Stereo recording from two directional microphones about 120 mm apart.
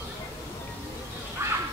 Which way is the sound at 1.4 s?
20° right (ahead or behind).